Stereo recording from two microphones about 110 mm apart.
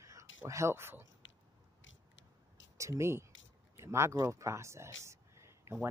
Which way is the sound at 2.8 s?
25° right (ahead or behind).